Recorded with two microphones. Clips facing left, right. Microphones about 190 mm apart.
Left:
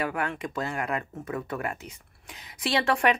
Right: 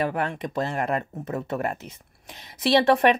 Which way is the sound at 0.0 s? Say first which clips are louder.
Right 4 dB; 30° right (ahead or behind).